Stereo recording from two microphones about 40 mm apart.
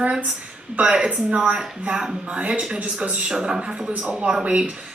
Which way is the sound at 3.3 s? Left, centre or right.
Centre.